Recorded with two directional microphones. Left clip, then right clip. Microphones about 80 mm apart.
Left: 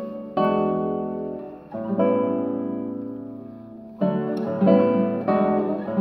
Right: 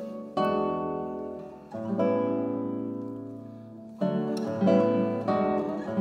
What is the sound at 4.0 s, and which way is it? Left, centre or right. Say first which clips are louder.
Music: left 5 dB; right.